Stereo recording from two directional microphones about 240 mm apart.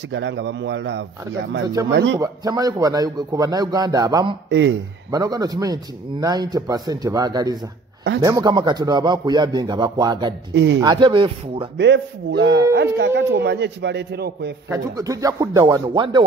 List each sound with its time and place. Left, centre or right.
0.1 s a man's voice: right
2.1 s speech: centre
4.5 s speech: right
5.1 s speech: centre
10.5 s a man's voice: right
10.8 s speech: centre
11.8 s a man's voice: right
14.7 s speech: centre